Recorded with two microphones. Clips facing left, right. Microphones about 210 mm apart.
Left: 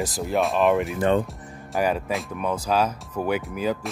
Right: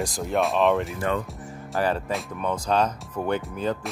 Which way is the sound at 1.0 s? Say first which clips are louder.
Left 5 dB; 30° left (ahead or behind).